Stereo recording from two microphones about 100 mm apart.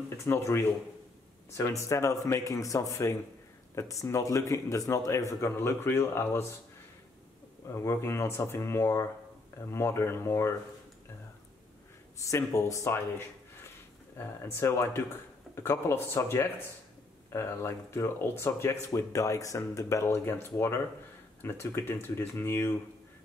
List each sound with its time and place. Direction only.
0.2 s speech: 30° left (ahead or behind)
7.7 s speech: 25° left (ahead or behind)
12.2 s speech: 30° left (ahead or behind)
14.1 s speech: 25° left (ahead or behind)